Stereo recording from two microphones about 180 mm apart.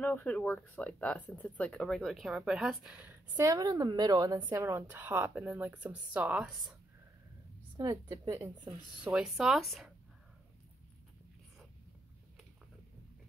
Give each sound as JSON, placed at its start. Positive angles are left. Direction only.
{"t": 0.0, "sound": "speech", "side_deg": 10}
{"t": 7.7, "sound": "a woman's voice", "side_deg": -20}
{"t": 9.1, "sound": "speech", "side_deg": -5}